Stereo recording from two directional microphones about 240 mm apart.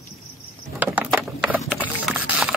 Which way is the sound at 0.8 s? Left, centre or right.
Centre.